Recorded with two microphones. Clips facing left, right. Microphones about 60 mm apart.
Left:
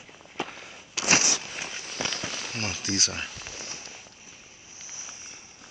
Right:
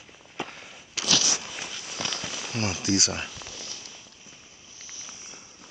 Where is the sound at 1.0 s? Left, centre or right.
Left.